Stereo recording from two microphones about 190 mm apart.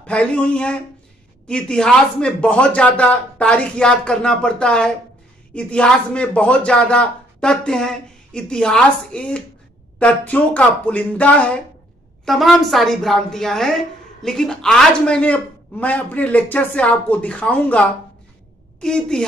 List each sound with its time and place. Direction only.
0.0 s a woman's voice: 5° left (ahead or behind)